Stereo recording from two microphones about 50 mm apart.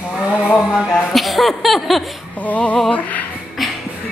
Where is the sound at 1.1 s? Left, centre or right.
Centre.